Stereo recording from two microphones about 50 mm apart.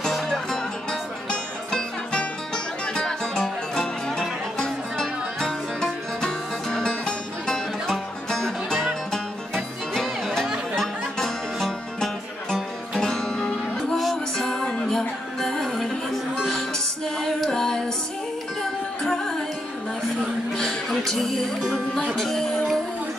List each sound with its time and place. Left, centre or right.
0.0 s music: centre
20.5 s music: centre